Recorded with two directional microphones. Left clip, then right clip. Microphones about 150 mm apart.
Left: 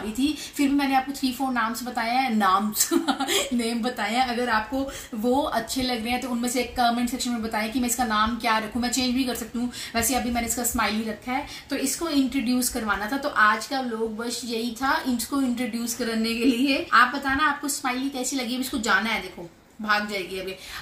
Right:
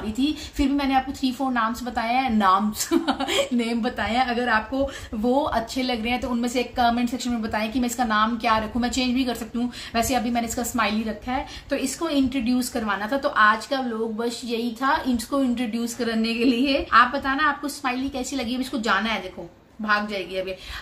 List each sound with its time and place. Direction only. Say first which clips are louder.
0.2 s a woman's voice: right 1 dB; 40° right (ahead or behind)